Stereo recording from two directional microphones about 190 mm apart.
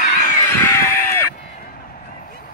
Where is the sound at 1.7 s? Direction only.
50° left (ahead or behind).